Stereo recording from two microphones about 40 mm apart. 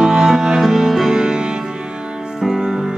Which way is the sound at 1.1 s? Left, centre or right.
Centre.